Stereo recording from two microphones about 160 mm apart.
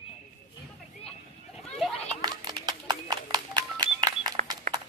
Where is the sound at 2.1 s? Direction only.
25° right (ahead or behind).